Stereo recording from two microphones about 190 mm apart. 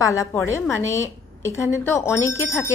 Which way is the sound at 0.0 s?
15° left (ahead or behind).